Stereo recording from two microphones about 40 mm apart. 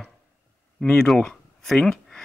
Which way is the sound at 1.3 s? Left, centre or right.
Centre.